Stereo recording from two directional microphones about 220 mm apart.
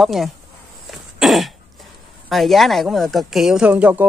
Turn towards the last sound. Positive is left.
turn(degrees=-5)  # may be behind; listen again after turning